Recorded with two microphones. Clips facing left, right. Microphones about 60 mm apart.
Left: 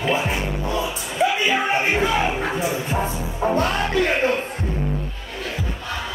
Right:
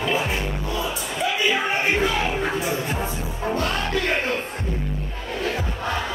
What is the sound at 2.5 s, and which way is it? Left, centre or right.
Music, left.